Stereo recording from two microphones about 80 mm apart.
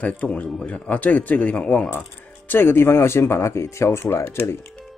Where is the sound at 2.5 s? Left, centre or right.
Left.